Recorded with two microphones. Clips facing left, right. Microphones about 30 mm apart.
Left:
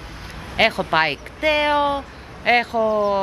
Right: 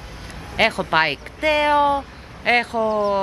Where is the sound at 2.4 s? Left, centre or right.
Centre.